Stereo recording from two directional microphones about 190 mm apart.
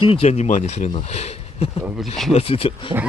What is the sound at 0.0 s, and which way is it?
Speech, 30° left (ahead or behind).